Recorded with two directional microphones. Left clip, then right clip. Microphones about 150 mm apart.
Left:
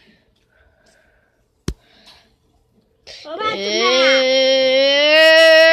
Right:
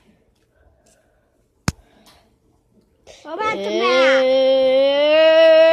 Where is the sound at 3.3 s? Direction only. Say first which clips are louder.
Even; 55° right (ahead or behind).